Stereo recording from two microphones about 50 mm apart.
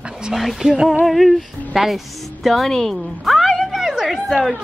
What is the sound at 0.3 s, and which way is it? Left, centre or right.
A woman's voice, centre.